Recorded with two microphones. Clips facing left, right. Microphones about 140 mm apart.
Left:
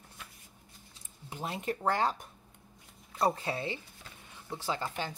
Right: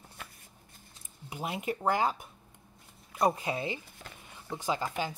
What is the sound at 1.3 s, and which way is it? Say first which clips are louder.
Speech: right 1 dB; 10° right (ahead or behind).